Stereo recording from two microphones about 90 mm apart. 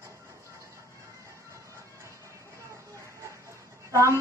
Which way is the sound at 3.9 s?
35° right (ahead or behind).